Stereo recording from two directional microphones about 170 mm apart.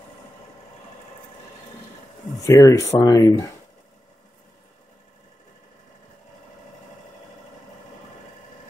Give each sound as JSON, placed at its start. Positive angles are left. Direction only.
{"t": 2.4, "sound": "speech", "side_deg": 20}